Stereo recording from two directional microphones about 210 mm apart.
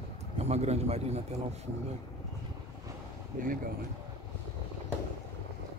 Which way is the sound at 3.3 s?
35° right (ahead or behind).